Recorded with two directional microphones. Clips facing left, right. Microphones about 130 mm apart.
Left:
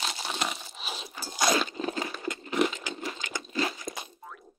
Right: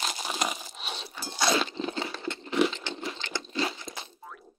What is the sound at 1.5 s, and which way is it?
Crunch, 30° right (ahead or behind).